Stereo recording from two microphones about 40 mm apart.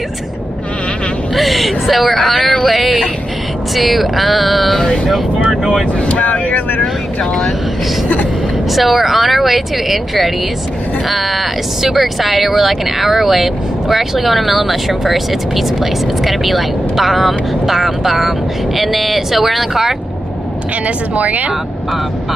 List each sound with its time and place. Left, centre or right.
1.3 s speech: centre
5.9 s speech: left
8.7 s speech: centre
20.8 s speech: right